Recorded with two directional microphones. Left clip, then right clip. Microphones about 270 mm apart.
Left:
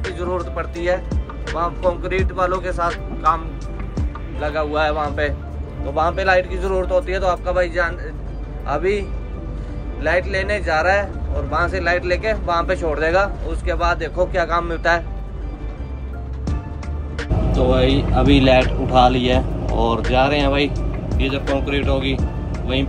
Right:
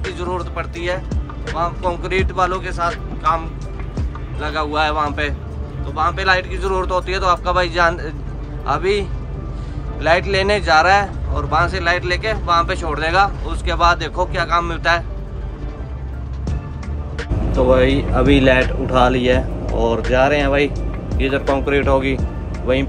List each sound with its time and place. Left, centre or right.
0.0 s speech: centre
10.0 s speech: centre
17.6 s speech: centre
18.2 s speech: centre
21.7 s speech: centre